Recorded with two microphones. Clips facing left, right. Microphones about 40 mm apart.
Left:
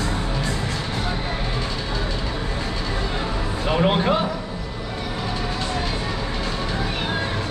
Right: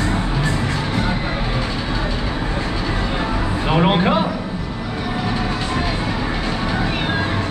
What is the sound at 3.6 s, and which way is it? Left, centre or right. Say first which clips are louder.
Music: right 3 dB; right.